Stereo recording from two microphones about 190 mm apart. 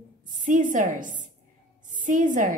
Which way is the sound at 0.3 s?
45° right (ahead or behind).